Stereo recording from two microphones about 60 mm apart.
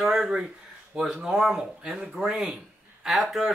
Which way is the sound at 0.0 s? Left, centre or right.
Centre.